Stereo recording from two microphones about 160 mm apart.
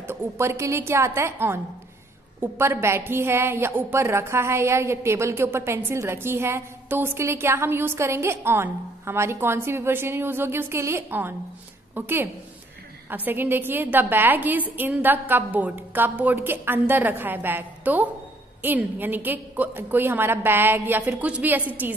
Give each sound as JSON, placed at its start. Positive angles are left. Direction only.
{"t": 0.0, "sound": "a woman's voice", "side_deg": -15}